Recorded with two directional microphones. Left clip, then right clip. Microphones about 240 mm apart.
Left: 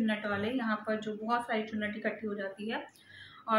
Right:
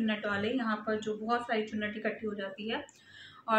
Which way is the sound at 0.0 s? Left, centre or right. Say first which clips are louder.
Right 1 dB; centre.